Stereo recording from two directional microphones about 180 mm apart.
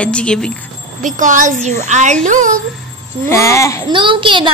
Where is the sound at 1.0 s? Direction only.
45° right (ahead or behind).